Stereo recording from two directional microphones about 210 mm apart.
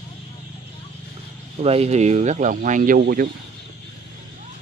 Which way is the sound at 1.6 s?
30° right (ahead or behind).